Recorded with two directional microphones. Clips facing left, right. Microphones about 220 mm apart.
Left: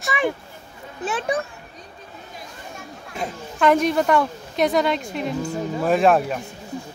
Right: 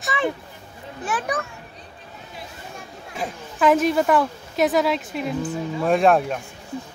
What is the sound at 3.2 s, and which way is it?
A woman's voice, centre (ahead or behind).